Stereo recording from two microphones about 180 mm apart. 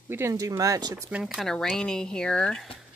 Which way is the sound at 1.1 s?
5° right (ahead or behind).